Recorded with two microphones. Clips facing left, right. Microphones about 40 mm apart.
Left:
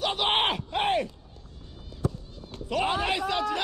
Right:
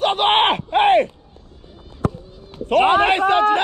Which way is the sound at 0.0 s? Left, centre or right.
Right.